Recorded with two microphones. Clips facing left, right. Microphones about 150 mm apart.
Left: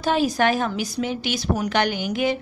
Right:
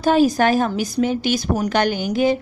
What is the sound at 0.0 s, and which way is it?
Speech, 45° right (ahead or behind).